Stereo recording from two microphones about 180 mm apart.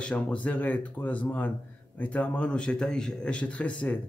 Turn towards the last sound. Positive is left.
turn(degrees=5)  # may be behind; listen again after turning